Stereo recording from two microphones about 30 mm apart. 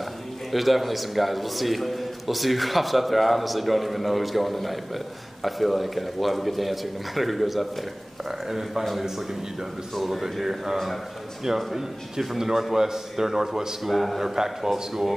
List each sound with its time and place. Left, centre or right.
0.5 s a man's voice: centre
8.3 s speech: centre
13.8 s a man's voice: centre
14.2 s a man's voice: centre